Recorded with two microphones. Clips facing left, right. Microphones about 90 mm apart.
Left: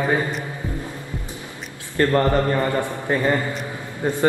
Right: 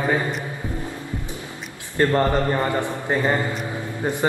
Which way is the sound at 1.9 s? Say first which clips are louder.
Left 1 dB; 20° right (ahead or behind).